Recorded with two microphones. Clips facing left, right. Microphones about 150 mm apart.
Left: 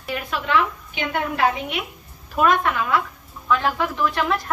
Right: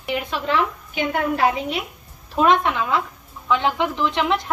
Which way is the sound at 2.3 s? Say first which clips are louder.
Right 1 dB; 25° right (ahead or behind).